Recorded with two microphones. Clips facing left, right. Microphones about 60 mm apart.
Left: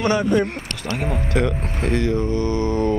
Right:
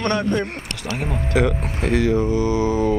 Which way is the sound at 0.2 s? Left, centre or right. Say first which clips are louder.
Left 3 dB; centre.